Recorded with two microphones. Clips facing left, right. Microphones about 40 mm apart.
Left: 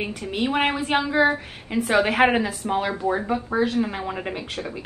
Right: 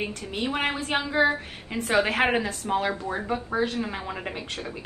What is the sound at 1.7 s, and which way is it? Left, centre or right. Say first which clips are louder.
A woman's voice: left 3 dB; centre.